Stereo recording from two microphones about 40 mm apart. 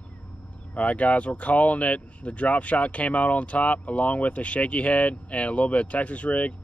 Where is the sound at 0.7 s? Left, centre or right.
Left.